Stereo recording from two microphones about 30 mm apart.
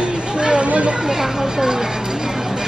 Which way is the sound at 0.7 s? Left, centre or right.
Right.